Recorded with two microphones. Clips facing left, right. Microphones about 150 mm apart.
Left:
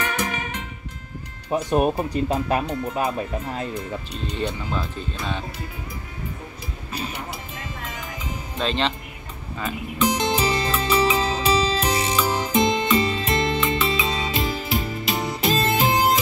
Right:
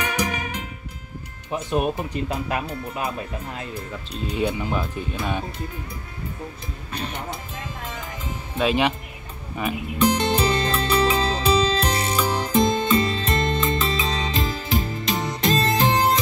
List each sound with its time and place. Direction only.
0.0 s music: 10° right (ahead or behind)
1.5 s speech: 35° left (ahead or behind)
4.3 s speech: 10° right (ahead or behind)
6.9 s speech: 5° left (ahead or behind)
8.5 s speech: 10° right (ahead or behind)
10.0 s music: 10° left (ahead or behind)